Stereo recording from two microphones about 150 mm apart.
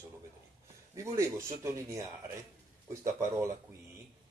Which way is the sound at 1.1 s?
20° right (ahead or behind).